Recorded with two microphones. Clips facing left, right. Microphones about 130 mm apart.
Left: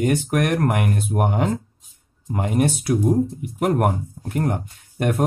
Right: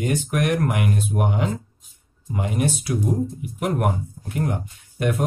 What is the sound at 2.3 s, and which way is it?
Speech, 50° left (ahead or behind).